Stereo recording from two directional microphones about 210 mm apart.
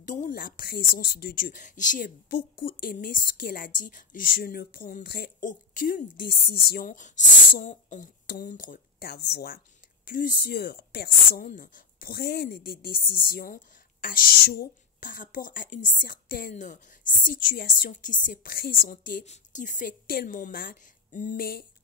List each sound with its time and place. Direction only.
0.0 s a woman's voice: 35° left (ahead or behind)